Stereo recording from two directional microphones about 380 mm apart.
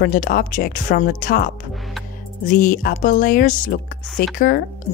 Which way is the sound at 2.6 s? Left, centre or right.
Left.